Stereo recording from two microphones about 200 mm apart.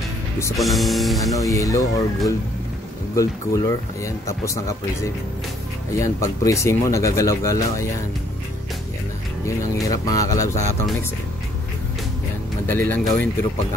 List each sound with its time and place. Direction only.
0.6 s speech: centre (ahead or behind)
1.2 s speech: 15° left (ahead or behind)
3.2 s speech: 15° left (ahead or behind)
9.8 s speech: 15° left (ahead or behind)
12.6 s speech: 10° left (ahead or behind)